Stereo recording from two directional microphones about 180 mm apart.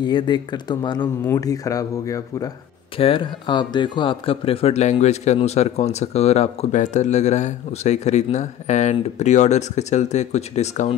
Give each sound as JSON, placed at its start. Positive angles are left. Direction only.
{"t": 0.0, "sound": "speech", "side_deg": 25}